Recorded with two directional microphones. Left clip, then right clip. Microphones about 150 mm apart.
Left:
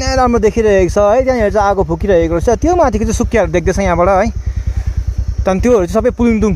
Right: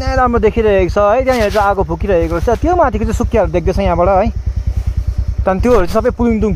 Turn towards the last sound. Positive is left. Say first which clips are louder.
# left 1 dB
turn(degrees=20)  # may be behind; listen again after turning